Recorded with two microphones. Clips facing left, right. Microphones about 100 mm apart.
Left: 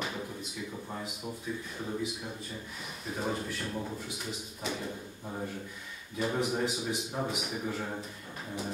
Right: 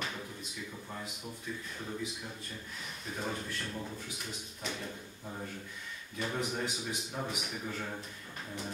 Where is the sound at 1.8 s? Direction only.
15° left (ahead or behind).